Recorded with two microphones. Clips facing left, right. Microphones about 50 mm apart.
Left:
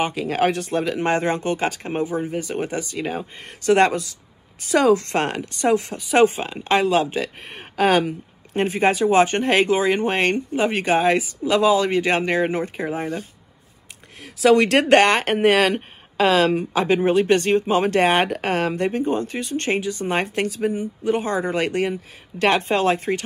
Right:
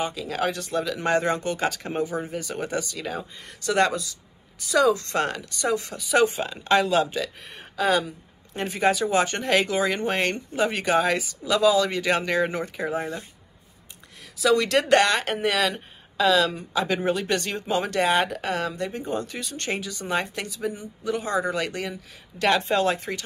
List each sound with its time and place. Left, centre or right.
0.0 s speech: left
14.2 s speech: left